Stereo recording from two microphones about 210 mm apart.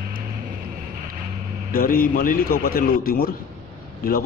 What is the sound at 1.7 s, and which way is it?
A man's voice, 45° left (ahead or behind).